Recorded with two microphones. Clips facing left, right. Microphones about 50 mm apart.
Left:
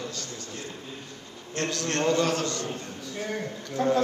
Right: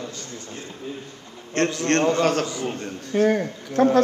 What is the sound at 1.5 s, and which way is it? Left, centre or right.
A man's voice, right.